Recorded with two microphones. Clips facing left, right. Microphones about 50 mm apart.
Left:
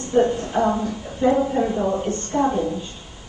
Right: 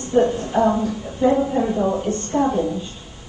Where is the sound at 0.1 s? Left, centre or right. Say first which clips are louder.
Right 1 dB; centre.